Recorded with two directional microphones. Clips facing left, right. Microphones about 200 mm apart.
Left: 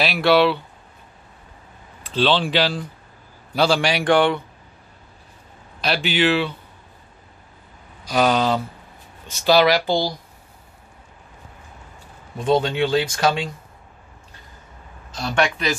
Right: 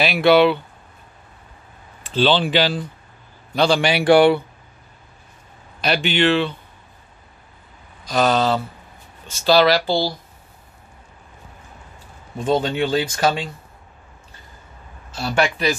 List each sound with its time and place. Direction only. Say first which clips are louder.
0.0 s a man's voice: right 3 dB; centre (ahead or behind)
2.0 s a man's voice: right 2 dB; centre (ahead or behind)
6.0 s speech: right 1 dB; 5° left (ahead or behind)
8.0 s speech: even; 10° left (ahead or behind)
12.4 s a man's voice: left 1 dB; 5° right (ahead or behind)
15.0 s a man's voice: right 1 dB; 5° right (ahead or behind)